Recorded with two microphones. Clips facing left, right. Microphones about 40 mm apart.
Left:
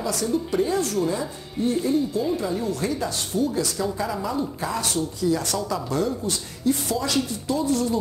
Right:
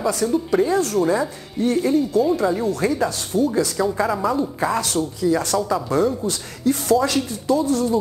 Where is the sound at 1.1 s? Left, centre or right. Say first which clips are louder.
Right 7 dB; right.